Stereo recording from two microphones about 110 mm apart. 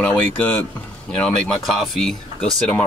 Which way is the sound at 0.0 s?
15° left (ahead or behind).